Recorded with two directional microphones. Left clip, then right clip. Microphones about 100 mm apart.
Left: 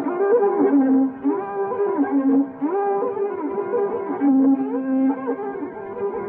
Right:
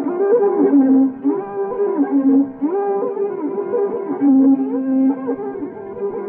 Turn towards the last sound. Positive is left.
turn(degrees=-30)  # may be behind; listen again after turning